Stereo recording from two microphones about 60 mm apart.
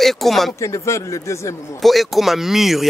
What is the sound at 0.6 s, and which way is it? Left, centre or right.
Speech, left.